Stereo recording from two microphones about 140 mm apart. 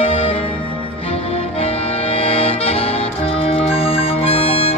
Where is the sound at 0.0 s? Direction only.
45° left (ahead or behind).